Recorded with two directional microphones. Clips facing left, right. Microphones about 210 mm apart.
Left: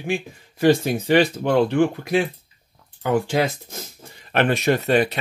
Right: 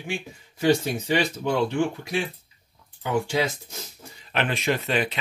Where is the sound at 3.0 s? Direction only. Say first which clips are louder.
Left 4 dB; 55° left (ahead or behind).